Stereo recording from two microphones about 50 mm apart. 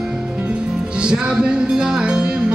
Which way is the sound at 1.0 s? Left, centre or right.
Centre.